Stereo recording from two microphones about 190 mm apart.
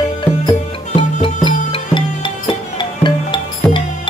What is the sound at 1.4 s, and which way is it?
Music, 25° left (ahead or behind).